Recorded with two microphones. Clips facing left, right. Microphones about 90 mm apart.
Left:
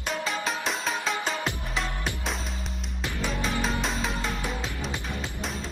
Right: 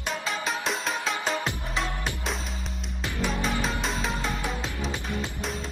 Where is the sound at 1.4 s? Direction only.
20° right (ahead or behind).